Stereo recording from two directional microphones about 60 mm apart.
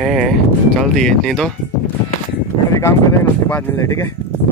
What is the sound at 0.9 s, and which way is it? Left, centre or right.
Speech, centre.